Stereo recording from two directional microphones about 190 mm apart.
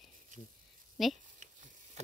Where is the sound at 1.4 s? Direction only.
40° right (ahead or behind).